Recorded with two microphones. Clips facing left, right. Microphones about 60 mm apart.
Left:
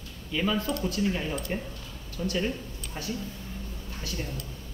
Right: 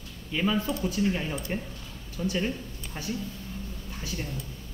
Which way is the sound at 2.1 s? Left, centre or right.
Centre.